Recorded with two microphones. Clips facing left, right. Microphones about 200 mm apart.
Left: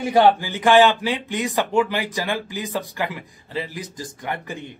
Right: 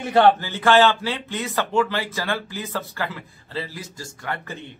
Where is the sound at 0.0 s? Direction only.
10° left (ahead or behind).